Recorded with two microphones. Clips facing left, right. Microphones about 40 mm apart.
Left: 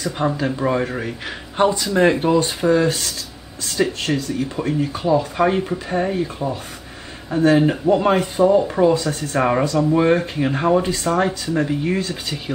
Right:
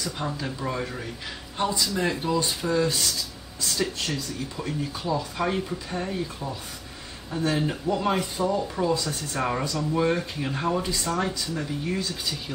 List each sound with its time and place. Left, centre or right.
0.0 s speech: left